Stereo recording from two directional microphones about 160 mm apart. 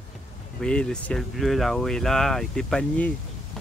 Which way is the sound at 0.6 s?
5° left (ahead or behind).